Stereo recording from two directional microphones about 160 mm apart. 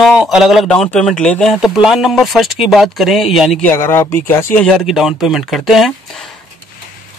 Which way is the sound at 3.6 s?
15° left (ahead or behind).